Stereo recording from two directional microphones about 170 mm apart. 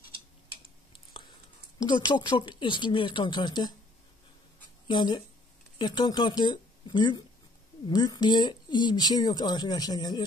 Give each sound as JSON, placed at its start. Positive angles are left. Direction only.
{"t": 1.8, "sound": "speech", "side_deg": 25}
{"t": 4.8, "sound": "speech", "side_deg": 30}